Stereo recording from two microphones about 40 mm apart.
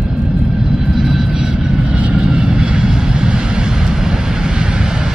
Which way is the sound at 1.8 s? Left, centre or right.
Right.